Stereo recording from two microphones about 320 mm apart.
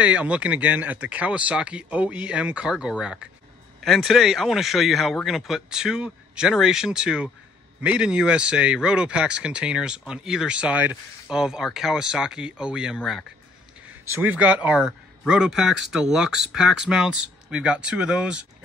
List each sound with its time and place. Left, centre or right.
0.0 s speech: centre